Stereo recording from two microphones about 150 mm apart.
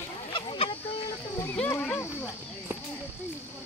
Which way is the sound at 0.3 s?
35° left (ahead or behind).